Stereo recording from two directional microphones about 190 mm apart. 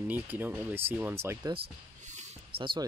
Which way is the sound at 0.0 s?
10° right (ahead or behind).